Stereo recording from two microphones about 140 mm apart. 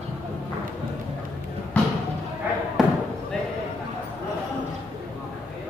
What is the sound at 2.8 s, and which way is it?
Basketball bounce, 5° right (ahead or behind).